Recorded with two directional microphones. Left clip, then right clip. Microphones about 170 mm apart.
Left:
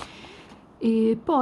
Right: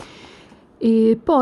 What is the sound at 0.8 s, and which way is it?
Speech, 35° right (ahead or behind).